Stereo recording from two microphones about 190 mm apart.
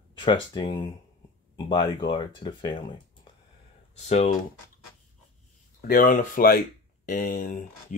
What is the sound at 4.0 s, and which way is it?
Speech, 35° left (ahead or behind).